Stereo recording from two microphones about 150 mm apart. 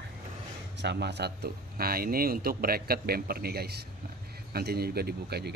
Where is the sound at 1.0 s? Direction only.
90° right.